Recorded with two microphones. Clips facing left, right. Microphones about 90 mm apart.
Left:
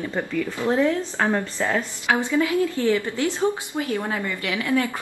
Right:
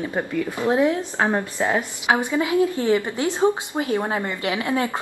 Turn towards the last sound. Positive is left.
turn(degrees=-25)  # may be behind; listen again after turning